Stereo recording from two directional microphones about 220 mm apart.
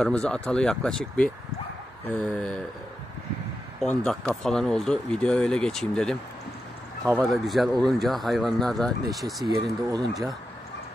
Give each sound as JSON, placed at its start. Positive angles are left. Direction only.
{"t": 0.0, "sound": "speech", "side_deg": 5}
{"t": 3.9, "sound": "speech", "side_deg": 5}
{"t": 9.6, "sound": "speech", "side_deg": -15}